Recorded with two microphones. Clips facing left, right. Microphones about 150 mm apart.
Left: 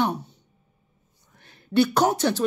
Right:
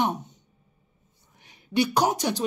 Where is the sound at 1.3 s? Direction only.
15° right (ahead or behind).